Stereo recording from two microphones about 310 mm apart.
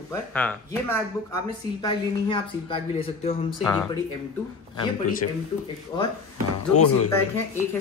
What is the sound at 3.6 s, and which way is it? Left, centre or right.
Speech, centre.